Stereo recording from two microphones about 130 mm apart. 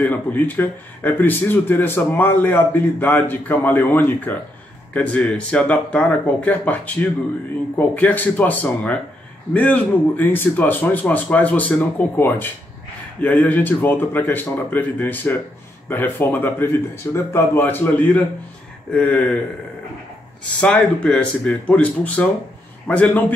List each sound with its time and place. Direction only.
0.0 s speech: 15° left (ahead or behind)
20.6 s speech: 5° left (ahead or behind)